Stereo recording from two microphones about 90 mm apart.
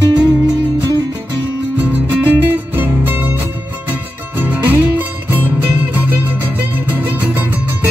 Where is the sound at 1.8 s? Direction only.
20° right (ahead or behind).